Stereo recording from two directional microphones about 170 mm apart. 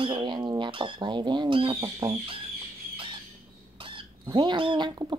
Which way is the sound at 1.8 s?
20° right (ahead or behind).